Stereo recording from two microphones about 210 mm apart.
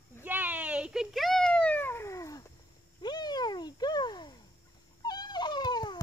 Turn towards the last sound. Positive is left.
turn(degrees=20)  # may be behind; listen again after turning